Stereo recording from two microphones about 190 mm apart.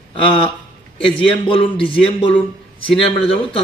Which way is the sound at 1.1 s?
25° left (ahead or behind).